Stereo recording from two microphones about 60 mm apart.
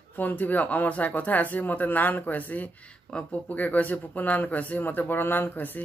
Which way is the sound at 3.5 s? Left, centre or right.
Left.